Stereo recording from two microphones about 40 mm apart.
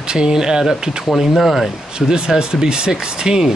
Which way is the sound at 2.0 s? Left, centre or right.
Right.